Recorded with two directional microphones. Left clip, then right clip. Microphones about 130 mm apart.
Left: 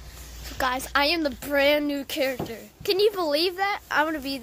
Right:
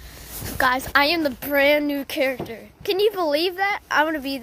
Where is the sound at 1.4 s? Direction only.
Centre (ahead or behind).